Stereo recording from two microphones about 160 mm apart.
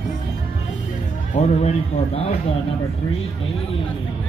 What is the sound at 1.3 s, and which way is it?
Speech, 45° left (ahead or behind).